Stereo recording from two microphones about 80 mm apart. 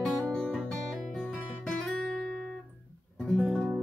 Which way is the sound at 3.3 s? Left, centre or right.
Centre.